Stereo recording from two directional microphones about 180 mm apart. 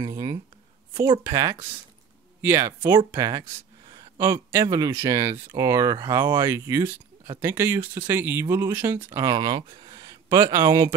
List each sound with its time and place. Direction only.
0.0 s speech: 20° right (ahead or behind)